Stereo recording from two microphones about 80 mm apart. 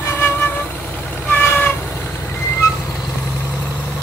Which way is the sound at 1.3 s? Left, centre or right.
Left.